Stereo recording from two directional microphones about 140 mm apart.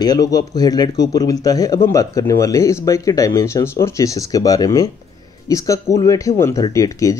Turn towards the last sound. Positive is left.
turn(degrees=25)  # may be behind; listen again after turning